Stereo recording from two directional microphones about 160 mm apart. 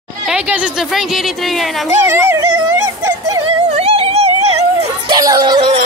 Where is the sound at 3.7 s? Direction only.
40° right (ahead or behind).